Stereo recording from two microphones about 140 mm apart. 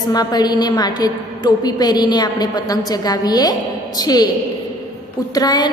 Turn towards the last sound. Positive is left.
turn(degrees=25)  # may be behind; listen again after turning